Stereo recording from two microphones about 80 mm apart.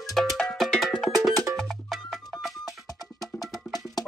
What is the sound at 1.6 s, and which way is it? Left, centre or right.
Music, centre.